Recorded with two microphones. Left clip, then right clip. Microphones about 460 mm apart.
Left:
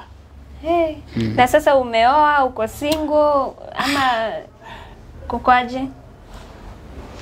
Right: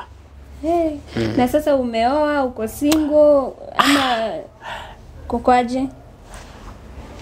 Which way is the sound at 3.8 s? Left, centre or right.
Right.